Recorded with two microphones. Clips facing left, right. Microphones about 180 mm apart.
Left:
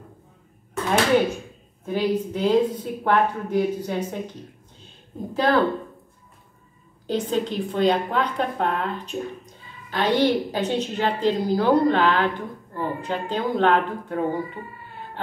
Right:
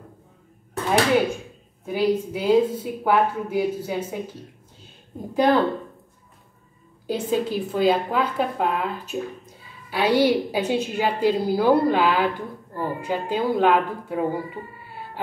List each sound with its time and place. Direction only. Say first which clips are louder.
1.9 s a woman's voice: right 1 dB; 10° right (ahead or behind)
5.3 s a woman's voice: right 2 dB; 15° right (ahead or behind)
7.1 s a woman's voice: right 1 dB; 10° right (ahead or behind)